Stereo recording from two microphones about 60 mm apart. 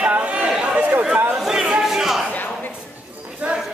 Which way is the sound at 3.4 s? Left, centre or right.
Centre.